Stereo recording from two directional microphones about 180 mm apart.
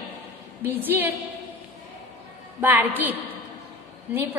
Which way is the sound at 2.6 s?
10° right (ahead or behind).